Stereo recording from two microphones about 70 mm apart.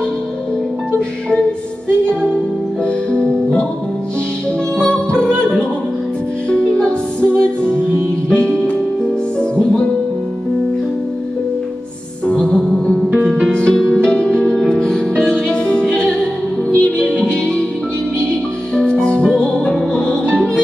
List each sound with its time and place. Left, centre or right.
2.8 s music: centre
4.7 s music: centre
12.3 s music: centre
18.8 s music: centre